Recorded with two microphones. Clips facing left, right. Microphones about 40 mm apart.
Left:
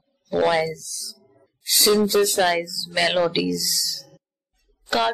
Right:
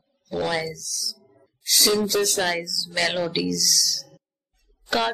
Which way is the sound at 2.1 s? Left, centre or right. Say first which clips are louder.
Left 4 dB; centre.